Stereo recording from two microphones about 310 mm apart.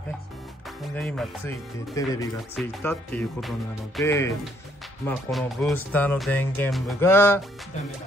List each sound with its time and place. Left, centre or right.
0.9 s speech: centre